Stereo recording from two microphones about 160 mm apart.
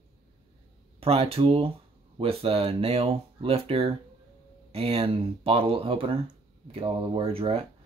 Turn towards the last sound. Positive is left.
turn(degrees=-35)  # may be behind; listen again after turning